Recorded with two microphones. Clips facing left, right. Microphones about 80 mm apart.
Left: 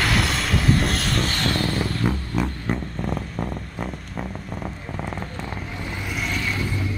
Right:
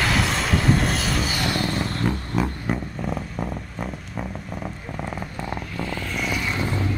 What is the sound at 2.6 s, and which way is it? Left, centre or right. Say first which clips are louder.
Vehicle: even; centre.